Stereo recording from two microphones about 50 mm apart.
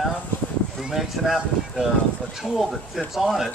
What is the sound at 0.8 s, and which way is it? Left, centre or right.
Speech, centre.